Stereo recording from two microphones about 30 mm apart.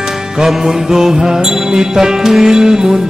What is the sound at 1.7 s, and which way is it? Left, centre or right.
A man's voice, centre.